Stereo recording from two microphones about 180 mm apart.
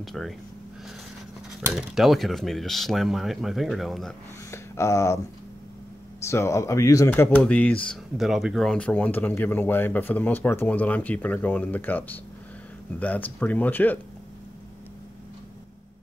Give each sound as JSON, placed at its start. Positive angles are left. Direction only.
{"t": 0.0, "sound": "speech", "side_deg": 0}
{"t": 1.6, "sound": "speech", "side_deg": -5}
{"t": 4.5, "sound": "speech", "side_deg": 15}
{"t": 6.2, "sound": "speech", "side_deg": 15}